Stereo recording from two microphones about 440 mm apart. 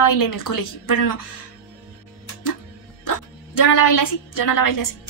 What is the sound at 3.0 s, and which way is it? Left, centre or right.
A woman's voice, left.